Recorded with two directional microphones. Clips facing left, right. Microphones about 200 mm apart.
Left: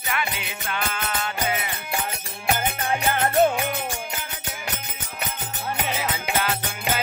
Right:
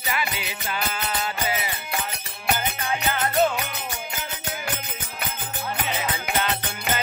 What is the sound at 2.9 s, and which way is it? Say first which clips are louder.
Music: left 3 dB; 50° left (ahead or behind).